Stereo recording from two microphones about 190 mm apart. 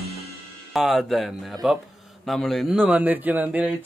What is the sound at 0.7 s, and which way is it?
A woman's voice, centre (ahead or behind).